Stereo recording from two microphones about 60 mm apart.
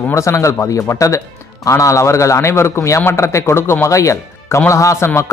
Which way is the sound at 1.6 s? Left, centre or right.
Left.